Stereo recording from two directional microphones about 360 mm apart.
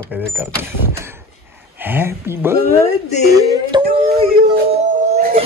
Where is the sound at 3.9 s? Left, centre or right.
Right.